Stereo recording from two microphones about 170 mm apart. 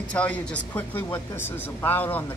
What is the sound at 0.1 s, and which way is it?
Speech, 10° left (ahead or behind).